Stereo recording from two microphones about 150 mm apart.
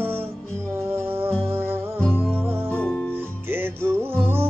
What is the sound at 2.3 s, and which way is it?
Music, 15° right (ahead or behind).